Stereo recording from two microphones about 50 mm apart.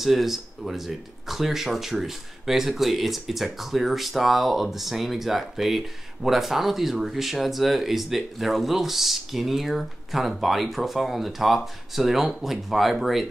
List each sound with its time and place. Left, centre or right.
0.0 s speech: centre